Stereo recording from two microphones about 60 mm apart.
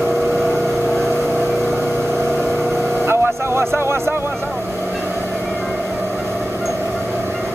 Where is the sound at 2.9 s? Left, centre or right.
Right.